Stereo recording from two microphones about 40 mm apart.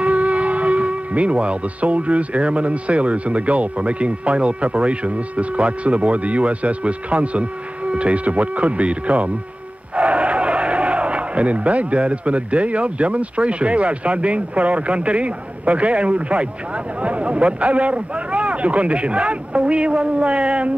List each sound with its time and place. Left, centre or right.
0.0 s speech: right